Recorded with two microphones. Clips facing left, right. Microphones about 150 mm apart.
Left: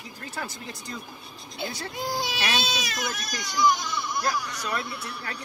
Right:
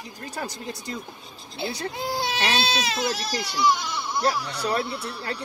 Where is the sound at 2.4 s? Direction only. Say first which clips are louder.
Right 4 dB; 25° right (ahead or behind).